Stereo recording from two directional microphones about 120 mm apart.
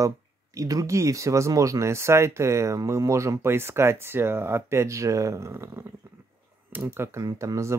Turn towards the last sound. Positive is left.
turn(degrees=-25)  # may be behind; listen again after turning